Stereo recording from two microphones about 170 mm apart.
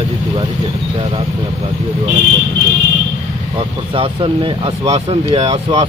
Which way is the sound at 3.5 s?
35° right (ahead or behind).